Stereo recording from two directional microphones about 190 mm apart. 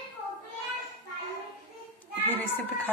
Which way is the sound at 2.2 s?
10° left (ahead or behind).